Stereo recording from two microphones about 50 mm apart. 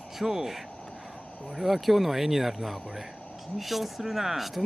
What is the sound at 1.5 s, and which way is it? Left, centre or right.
Speech, centre.